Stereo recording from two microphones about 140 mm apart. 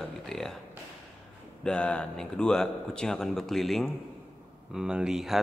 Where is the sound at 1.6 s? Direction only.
10° left (ahead or behind).